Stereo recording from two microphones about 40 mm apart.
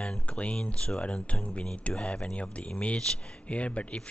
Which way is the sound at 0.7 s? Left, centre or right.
Left.